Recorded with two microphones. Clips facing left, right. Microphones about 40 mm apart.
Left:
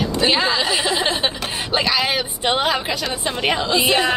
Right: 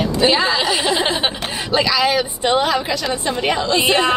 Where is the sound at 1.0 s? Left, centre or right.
Centre.